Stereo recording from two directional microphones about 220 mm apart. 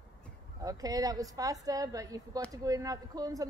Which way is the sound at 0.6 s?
15° right (ahead or behind).